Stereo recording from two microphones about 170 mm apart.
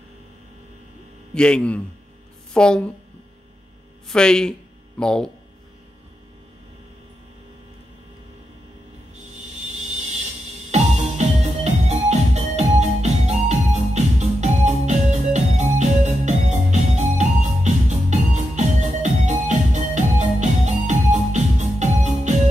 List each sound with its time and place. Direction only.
1.3 s a man's voice: 5° left (ahead or behind)
4.1 s speech: 5° left (ahead or behind)
10.7 s music: 40° right (ahead or behind)